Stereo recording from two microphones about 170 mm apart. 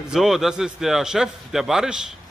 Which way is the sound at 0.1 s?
Centre (ahead or behind).